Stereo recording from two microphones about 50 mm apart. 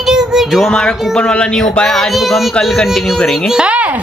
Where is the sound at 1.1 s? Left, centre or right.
Centre.